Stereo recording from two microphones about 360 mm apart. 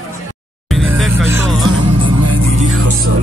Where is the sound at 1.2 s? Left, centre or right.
Centre.